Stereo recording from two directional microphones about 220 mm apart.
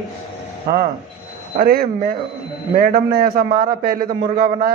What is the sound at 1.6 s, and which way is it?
A man's voice, 40° right (ahead or behind).